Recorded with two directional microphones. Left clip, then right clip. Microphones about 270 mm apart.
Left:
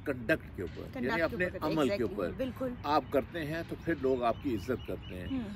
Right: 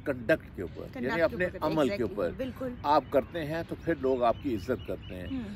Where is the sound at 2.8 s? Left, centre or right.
Centre.